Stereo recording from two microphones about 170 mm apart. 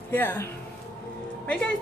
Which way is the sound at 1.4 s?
10° left (ahead or behind).